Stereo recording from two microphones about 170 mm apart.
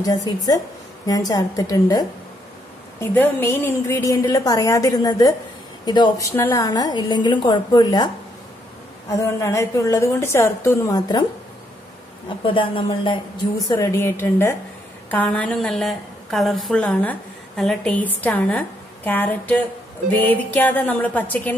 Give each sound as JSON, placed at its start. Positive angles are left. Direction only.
{"t": 0.0, "sound": "a woman's voice", "side_deg": 20}
{"t": 3.0, "sound": "a woman's voice", "side_deg": 10}
{"t": 9.1, "sound": "a woman's voice", "side_deg": 20}
{"t": 12.3, "sound": "a woman's voice", "side_deg": 30}
{"t": 13.7, "sound": "a woman's voice", "side_deg": 20}